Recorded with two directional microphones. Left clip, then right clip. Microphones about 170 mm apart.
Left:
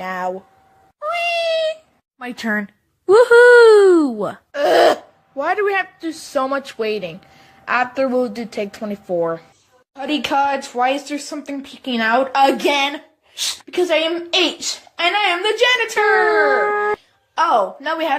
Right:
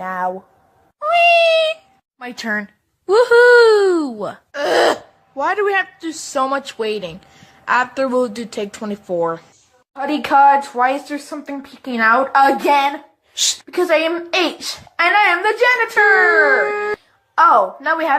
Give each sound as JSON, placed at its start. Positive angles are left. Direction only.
{"t": 0.0, "sound": "a woman's voice", "side_deg": 15}
{"t": 0.9, "sound": "cat", "side_deg": 0}
{"t": 2.1, "sound": "speech", "side_deg": 10}
{"t": 4.6, "sound": "speech", "side_deg": 0}
{"t": 9.9, "sound": "a woman's voice", "side_deg": 5}
{"t": 13.4, "sound": "a woman's voice", "side_deg": 0}
{"t": 16.4, "sound": "speech", "side_deg": -15}
{"t": 17.8, "sound": "a woman's voice", "side_deg": 15}